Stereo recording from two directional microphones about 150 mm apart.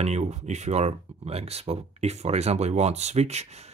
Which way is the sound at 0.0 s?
50° right (ahead or behind).